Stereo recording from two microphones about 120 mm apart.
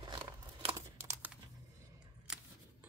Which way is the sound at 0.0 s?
45° right (ahead or behind).